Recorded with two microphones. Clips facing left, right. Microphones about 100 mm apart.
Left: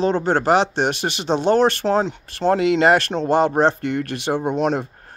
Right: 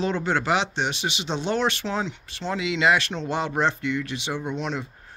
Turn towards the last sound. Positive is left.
turn(degrees=50)  # may be behind; listen again after turning